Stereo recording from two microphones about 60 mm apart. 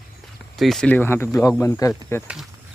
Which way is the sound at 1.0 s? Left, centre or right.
Left.